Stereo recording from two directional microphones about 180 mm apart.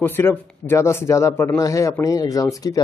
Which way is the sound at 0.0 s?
10° left (ahead or behind).